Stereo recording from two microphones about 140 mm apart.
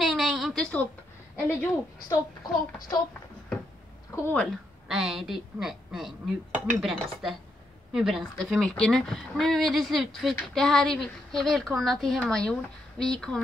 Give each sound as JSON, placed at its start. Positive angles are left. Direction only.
{"t": 0.0, "sound": "a sound", "side_deg": 0}
{"t": 1.3, "sound": "speech", "side_deg": 15}
{"t": 4.1, "sound": "speech", "side_deg": 15}
{"t": 4.8, "sound": "a woman's voice", "side_deg": -5}